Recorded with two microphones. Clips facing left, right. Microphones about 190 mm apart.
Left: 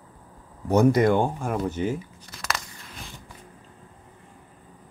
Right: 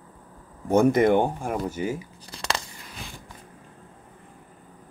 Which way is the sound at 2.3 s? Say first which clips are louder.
Right 2 dB; 30° right (ahead or behind).